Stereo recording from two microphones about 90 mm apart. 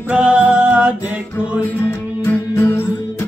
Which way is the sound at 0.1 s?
10° right (ahead or behind).